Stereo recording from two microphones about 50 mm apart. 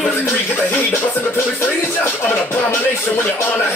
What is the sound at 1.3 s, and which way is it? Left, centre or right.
Music, left.